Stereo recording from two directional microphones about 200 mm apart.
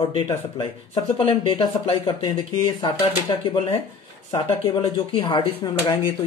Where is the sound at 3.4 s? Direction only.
25° left (ahead or behind).